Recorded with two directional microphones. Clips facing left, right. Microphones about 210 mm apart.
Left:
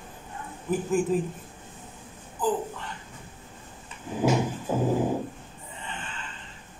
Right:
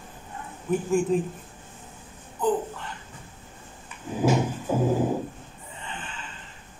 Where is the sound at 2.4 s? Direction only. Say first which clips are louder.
Right 2 dB; centre (ahead or behind).